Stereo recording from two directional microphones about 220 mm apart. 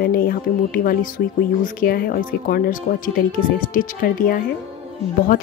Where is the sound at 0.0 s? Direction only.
40° left (ahead or behind).